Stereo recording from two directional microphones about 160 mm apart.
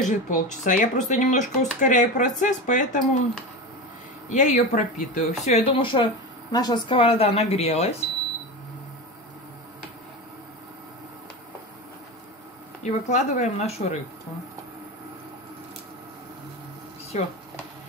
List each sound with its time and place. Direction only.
0.0 s speech: 50° left (ahead or behind)
4.3 s speech: 50° left (ahead or behind)
5.7 s speech: 30° left (ahead or behind)
12.8 s speech: 45° left (ahead or behind)